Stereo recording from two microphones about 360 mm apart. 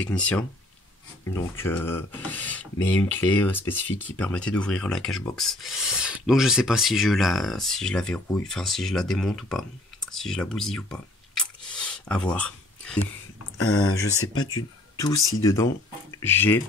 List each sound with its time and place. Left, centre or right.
0.0 s speech: centre
13.6 s speech: left
14.3 s speech: centre